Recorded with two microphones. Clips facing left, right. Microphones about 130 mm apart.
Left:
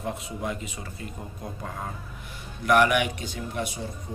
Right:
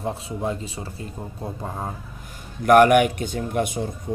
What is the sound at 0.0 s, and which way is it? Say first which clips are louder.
Speech: right 5 dB; 30° right (ahead or behind).